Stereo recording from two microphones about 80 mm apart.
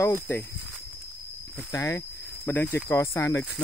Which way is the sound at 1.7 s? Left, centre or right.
Left.